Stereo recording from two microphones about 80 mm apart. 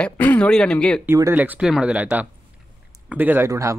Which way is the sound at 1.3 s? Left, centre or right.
Right.